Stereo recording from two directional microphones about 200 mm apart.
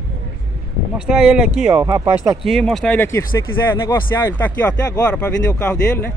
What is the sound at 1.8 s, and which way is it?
Speech, 20° right (ahead or behind).